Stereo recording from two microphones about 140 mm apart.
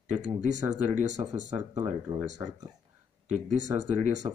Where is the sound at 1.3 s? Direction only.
55° right (ahead or behind).